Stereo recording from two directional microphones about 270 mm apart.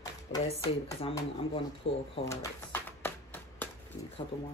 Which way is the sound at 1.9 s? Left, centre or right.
Left.